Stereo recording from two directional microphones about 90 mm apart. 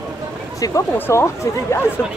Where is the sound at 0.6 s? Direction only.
35° left (ahead or behind).